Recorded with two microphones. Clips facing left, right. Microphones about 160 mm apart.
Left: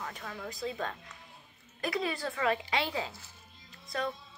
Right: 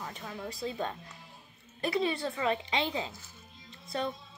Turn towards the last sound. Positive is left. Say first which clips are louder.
# right 1 dB
turn(degrees=-25)  # may be behind; listen again after turning